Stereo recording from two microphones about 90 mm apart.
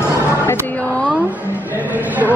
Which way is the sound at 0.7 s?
15° left (ahead or behind).